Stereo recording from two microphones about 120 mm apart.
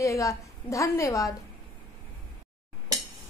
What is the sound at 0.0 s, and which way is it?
A woman's voice, 25° left (ahead or behind).